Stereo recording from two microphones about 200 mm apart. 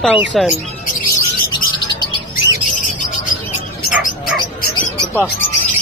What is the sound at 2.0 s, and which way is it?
Bird, 20° left (ahead or behind).